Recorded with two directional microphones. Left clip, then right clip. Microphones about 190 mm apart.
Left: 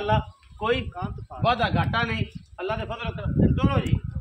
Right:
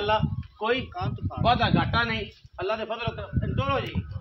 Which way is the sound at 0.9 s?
45° right (ahead or behind).